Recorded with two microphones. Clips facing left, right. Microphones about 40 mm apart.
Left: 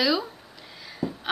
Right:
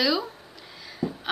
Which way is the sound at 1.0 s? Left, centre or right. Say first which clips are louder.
Right 1 dB; left.